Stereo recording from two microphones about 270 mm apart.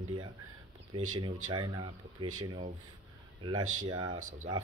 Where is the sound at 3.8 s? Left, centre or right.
Centre.